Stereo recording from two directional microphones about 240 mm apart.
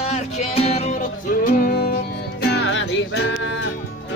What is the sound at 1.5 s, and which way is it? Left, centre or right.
Music, left.